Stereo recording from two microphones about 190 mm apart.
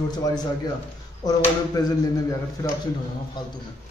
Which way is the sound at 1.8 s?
20° left (ahead or behind).